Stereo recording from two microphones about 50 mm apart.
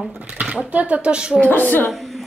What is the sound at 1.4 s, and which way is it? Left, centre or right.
Speech, left.